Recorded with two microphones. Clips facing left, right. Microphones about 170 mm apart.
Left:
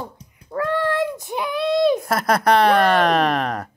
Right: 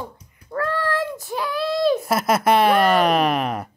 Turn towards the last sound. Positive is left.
turn(degrees=-5)  # may be behind; listen again after turning